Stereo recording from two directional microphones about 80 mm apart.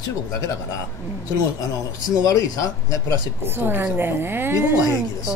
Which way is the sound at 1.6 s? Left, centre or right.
Left.